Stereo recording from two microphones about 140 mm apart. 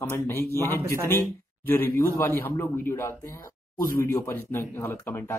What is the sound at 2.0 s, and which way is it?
Speech, 20° left (ahead or behind).